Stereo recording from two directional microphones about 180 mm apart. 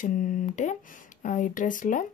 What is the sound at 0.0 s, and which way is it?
A woman's voice, 45° left (ahead or behind).